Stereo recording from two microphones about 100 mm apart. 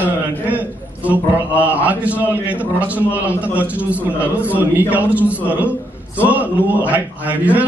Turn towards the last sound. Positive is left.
turn(degrees=-15)  # may be behind; listen again after turning